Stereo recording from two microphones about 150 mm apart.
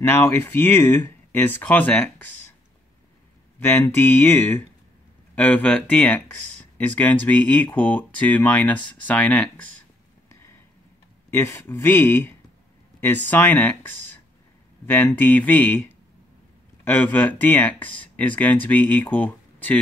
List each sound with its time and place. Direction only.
0.0 s speech: 15° left (ahead or behind)
3.5 s speech: 10° left (ahead or behind)
11.2 s speech: 15° left (ahead or behind)
15.1 s speech: 10° left (ahead or behind)
16.8 s speech: 15° left (ahead or behind)